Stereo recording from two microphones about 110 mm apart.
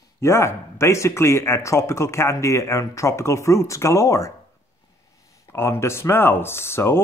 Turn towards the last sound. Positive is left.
turn(degrees=20)  # may be behind; listen again after turning